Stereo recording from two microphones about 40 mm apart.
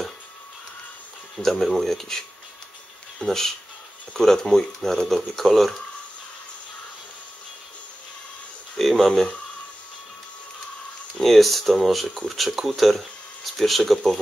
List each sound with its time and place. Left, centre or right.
1.4 s speech: centre
8.7 s a sound: centre
11.1 s speech: centre